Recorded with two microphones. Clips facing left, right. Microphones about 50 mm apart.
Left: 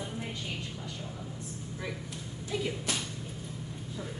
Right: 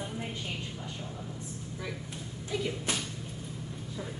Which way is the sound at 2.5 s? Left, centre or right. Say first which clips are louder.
Even; centre.